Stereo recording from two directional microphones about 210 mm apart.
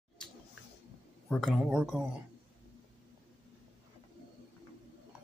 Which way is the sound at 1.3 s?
Centre (ahead or behind).